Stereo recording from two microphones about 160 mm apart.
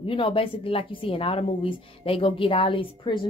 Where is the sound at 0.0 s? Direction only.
35° left (ahead or behind).